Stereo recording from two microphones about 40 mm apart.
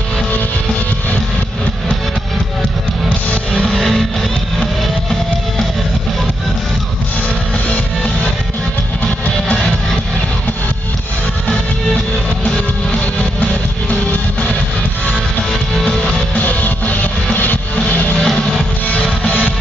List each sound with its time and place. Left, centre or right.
3.6 s music: centre
13.4 s music: left
16.3 s music: left
18.2 s music: centre
19.2 s music: left